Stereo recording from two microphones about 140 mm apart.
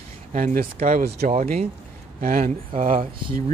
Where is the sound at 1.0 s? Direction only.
50° right (ahead or behind).